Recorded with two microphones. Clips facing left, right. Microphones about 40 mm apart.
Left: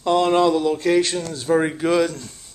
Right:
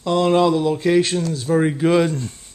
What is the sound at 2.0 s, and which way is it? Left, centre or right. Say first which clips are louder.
Speech: right 2 dB; right.